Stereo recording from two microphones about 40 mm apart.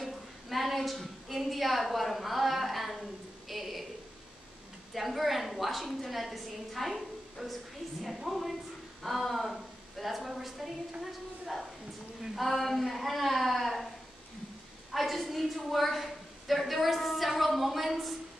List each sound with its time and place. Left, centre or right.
0.0 s a sound: centre
4.9 s a woman's voice: centre
12.4 s a woman's voice: centre
14.9 s a woman's voice: centre